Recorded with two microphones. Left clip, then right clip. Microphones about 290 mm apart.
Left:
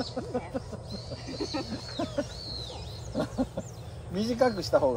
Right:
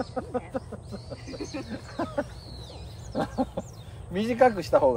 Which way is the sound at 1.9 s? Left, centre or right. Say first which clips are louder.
Right 2 dB; centre.